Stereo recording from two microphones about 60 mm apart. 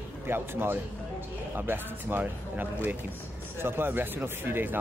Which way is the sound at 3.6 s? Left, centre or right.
Right.